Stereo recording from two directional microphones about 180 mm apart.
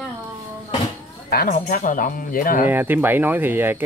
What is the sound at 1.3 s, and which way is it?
Speech, 55° left (ahead or behind).